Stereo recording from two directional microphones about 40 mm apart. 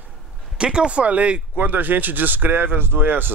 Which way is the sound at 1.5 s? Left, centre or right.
Right.